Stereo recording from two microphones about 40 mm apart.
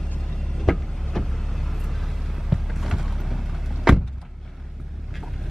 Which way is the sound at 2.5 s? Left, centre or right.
Centre.